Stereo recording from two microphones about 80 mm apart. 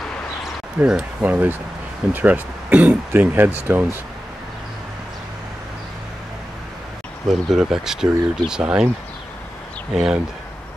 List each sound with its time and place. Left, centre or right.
0.7 s speech: centre
7.2 s speech: centre
9.9 s speech: centre